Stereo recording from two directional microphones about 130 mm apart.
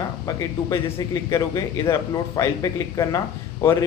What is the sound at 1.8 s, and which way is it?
Speech, 25° left (ahead or behind).